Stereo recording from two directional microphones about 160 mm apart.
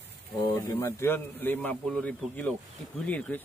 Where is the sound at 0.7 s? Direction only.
15° left (ahead or behind).